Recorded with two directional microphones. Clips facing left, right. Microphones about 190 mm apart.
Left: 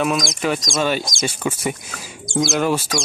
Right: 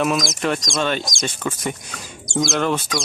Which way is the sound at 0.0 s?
Centre (ahead or behind).